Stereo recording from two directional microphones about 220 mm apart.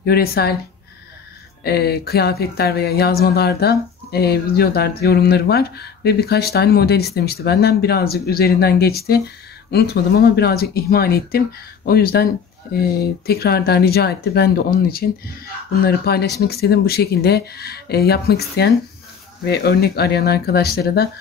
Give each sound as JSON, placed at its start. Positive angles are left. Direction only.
{"t": 0.0, "sound": "speech", "side_deg": 45}
{"t": 1.6, "sound": "speech", "side_deg": 45}